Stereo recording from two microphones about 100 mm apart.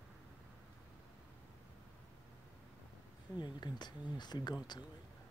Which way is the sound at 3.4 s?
50° left (ahead or behind).